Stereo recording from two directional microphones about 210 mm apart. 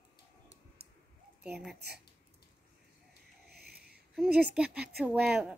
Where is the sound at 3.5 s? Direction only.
50° right (ahead or behind).